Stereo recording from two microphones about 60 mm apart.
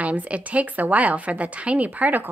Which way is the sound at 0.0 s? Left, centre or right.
Right.